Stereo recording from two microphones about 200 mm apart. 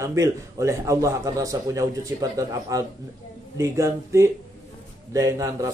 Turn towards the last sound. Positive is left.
turn(degrees=-15)  # may be behind; listen again after turning